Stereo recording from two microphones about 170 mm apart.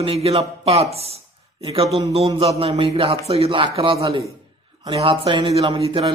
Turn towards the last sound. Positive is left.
turn(degrees=-30)  # may be behind; listen again after turning